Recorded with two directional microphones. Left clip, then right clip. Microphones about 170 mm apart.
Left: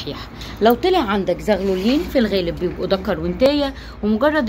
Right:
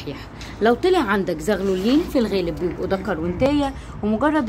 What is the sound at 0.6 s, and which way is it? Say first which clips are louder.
A woman's voice: left 2 dB; 15° right (ahead or behind).